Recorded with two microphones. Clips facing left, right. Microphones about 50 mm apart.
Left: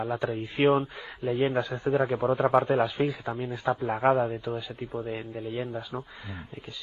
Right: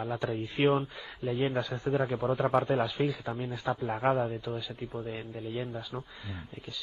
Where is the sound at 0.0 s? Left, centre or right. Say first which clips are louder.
Left 3 dB; centre.